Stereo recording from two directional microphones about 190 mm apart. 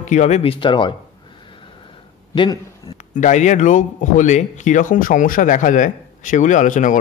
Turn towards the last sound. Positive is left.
turn(degrees=40)  # may be behind; listen again after turning